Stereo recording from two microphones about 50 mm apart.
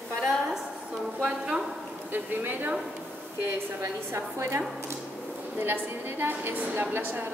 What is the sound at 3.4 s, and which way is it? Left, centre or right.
A woman's voice, right.